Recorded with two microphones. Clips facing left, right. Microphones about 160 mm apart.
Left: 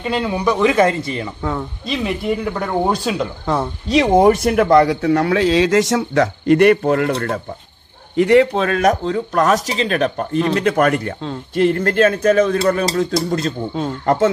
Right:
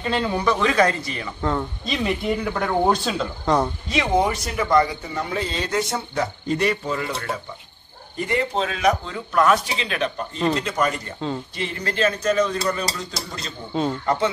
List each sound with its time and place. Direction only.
0.0 s speech: 5° left (ahead or behind)
0.5 s speech: 20° left (ahead or behind)
1.4 s speech: centre (ahead or behind)
3.9 s speech: 45° left (ahead or behind)
8.2 s speech: 80° left; by 11.1 s 60° left (ahead or behind)
11.5 s speech: 50° left (ahead or behind)